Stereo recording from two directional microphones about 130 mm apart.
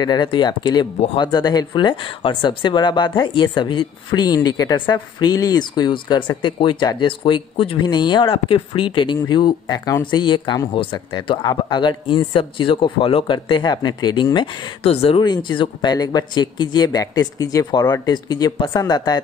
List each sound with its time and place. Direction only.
0.0 s speech: 35° left (ahead or behind)
15.2 s speech: 35° left (ahead or behind)